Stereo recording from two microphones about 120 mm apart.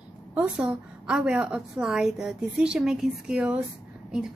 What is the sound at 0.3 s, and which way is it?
A woman's voice, 10° right (ahead or behind).